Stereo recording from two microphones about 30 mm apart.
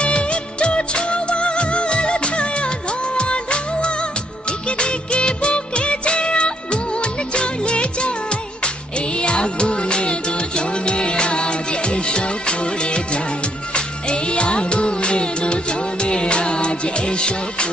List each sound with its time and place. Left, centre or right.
0.0 s music of bollywood: left
3.2 s music: left
4.5 s music of bollywood: left
13.7 s music: left